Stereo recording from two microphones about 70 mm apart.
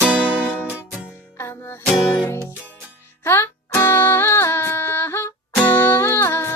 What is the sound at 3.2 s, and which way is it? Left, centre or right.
Music, left.